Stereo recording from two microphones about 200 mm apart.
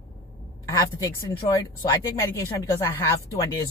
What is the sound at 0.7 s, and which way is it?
Speech, 15° left (ahead or behind).